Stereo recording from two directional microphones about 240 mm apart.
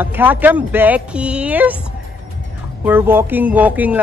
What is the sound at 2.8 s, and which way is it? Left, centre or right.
Speech, centre.